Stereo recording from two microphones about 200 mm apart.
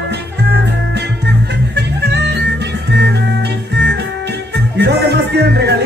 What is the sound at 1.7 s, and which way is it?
Music, 55° right (ahead or behind).